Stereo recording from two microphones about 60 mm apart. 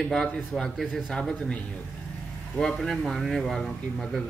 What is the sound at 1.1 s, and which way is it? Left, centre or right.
A man's voice, centre.